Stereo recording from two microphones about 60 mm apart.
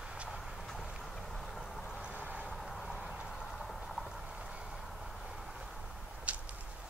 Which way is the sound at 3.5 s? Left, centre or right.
Centre.